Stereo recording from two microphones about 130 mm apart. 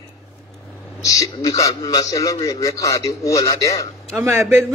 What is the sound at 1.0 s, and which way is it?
A man's voice, 25° left (ahead or behind).